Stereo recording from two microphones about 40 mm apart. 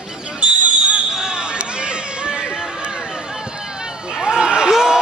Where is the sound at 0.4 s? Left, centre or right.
Right.